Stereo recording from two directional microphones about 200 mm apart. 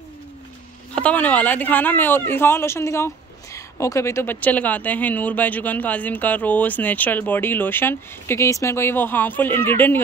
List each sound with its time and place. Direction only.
0.9 s speech: 5° left (ahead or behind)